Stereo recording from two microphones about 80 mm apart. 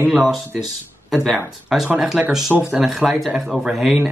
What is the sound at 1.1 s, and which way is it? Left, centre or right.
Speech, centre.